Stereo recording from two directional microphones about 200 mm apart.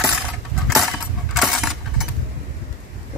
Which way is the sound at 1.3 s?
Centre (ahead or behind).